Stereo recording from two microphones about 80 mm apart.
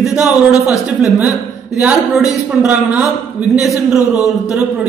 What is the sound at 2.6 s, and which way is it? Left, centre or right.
Speech, centre.